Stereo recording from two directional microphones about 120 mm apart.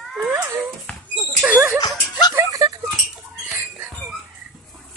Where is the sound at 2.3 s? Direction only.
30° right (ahead or behind).